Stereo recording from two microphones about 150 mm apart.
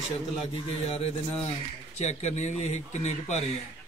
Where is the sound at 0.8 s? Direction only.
40° left (ahead or behind).